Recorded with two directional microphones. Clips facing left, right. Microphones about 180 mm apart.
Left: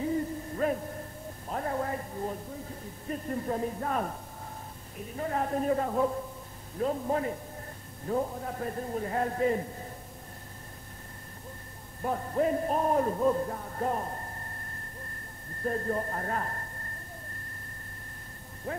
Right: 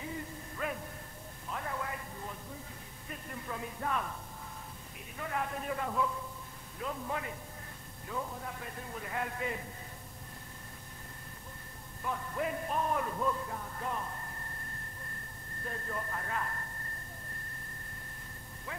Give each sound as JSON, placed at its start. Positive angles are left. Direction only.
{"t": 0.0, "sound": "a sound", "side_deg": 40}
{"t": 3.1, "sound": "speech", "side_deg": 40}
{"t": 12.0, "sound": "speech", "side_deg": 40}
{"t": 15.6, "sound": "speech", "side_deg": 40}
{"t": 18.7, "sound": "speech", "side_deg": 45}